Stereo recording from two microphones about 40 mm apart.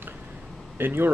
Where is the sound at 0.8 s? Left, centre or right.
Right.